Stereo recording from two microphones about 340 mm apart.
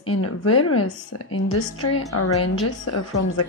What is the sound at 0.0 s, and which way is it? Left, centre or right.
A woman's voice, left.